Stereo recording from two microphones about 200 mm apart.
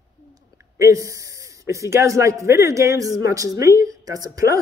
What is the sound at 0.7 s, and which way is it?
A man's voice, 15° right (ahead or behind).